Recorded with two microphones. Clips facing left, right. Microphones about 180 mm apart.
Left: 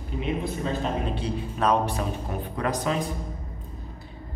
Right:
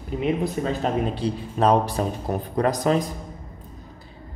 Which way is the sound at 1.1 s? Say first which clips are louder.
Right 3 dB; 35° right (ahead or behind).